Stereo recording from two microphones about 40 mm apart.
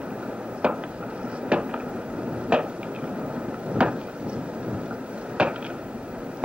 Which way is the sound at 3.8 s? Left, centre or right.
Right.